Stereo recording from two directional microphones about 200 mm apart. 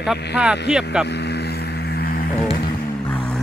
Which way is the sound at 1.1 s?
55° left (ahead or behind).